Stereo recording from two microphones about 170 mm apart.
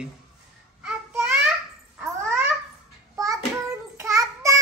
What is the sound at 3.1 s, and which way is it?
Child singing, 20° right (ahead or behind).